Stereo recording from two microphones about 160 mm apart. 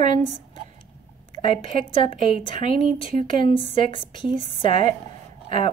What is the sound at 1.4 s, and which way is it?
Speech, 35° left (ahead or behind).